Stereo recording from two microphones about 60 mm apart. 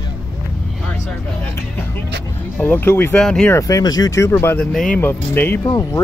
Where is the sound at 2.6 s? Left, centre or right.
Left.